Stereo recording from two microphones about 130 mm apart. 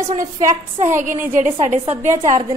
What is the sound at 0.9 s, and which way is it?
Speech, 75° right (ahead or behind).